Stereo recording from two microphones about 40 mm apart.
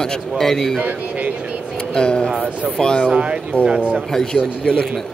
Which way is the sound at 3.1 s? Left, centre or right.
Right.